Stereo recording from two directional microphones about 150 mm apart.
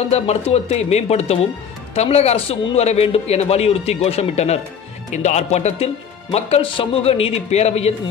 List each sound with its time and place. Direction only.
0.1 s a man's voice: 45° left (ahead or behind)